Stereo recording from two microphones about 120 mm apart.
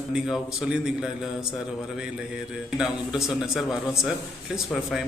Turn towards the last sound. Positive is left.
turn(degrees=0)  # may be behind; listen again after turning